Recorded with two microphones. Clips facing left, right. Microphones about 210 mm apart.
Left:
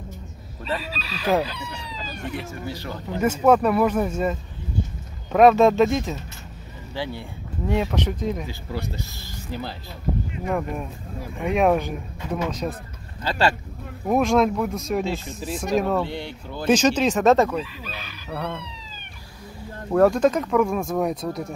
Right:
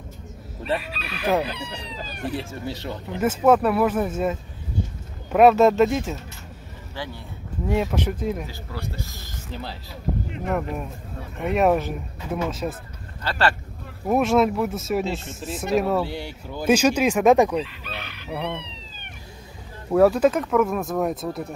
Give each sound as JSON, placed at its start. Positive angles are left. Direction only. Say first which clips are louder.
{"t": 0.7, "sound": "speech", "louder": "even", "side_deg": -60}
{"t": 2.2, "sound": "speech", "louder": "right 3 dB", "side_deg": -30}
{"t": 3.2, "sound": "speech", "louder": "even", "side_deg": -5}
{"t": 7.0, "sound": "speech", "louder": "left 4 dB", "side_deg": 15}
{"t": 7.6, "sound": "speech", "louder": "even", "side_deg": -5}
{"t": 9.5, "sound": "speech", "louder": "left 3 dB", "side_deg": 0}
{"t": 13.2, "sound": "speech", "louder": "left 1 dB", "side_deg": 15}
{"t": 14.0, "sound": "speech", "louder": "even", "side_deg": -5}
{"t": 17.6, "sound": "chicken", "louder": "even", "side_deg": -65}
{"t": 18.3, "sound": "speech", "louder": "right 1 dB", "side_deg": -10}
{"t": 18.6, "sound": "cat", "louder": "left 1 dB", "side_deg": -65}
{"t": 19.9, "sound": "speech", "louder": "right 1 dB", "side_deg": -5}